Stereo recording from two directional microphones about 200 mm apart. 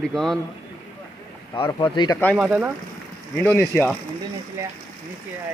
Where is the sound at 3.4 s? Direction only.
10° left (ahead or behind).